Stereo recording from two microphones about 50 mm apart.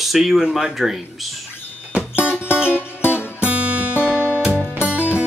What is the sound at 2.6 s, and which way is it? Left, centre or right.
Music, left.